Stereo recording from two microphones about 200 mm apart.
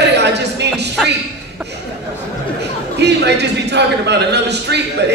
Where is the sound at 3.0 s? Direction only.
55° right (ahead or behind).